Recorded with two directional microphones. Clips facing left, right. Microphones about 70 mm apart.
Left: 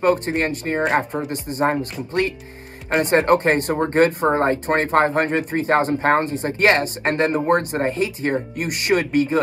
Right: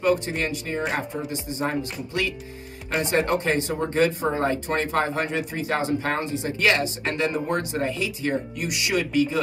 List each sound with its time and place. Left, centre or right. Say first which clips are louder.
0.0 s speech: left 4 dB; left